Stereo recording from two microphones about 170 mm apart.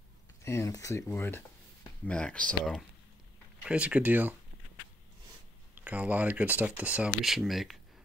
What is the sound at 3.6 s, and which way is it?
Speech, 5° right (ahead or behind).